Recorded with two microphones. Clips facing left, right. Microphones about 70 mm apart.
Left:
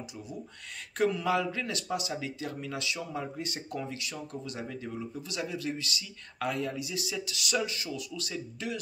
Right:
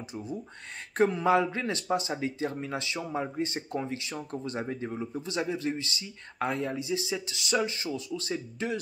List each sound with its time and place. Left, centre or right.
0.9 s speech: right